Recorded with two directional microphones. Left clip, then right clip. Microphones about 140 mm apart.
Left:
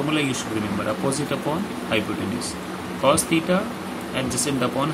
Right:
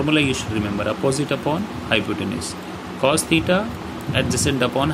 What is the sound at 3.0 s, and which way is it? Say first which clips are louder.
Speech: right 1 dB; 50° right (ahead or behind).